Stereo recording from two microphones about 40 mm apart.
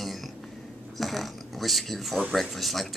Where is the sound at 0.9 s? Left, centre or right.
Centre.